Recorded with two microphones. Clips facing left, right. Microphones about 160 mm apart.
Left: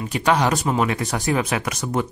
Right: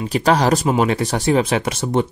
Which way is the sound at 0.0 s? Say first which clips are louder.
Right 3 dB; 35° right (ahead or behind).